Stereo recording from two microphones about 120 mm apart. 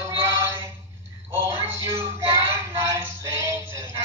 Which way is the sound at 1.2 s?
20° right (ahead or behind).